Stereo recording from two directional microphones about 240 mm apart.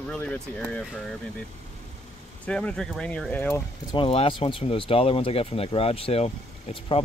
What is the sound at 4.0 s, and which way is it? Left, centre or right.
Speech, left.